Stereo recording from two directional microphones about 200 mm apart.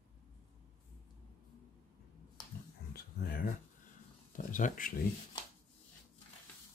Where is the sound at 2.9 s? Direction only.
50° left (ahead or behind).